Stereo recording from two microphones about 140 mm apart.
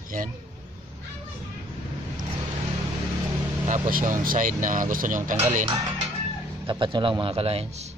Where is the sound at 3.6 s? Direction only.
65° right (ahead or behind).